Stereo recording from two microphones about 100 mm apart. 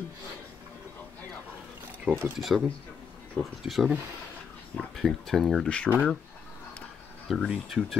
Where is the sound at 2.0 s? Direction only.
20° right (ahead or behind).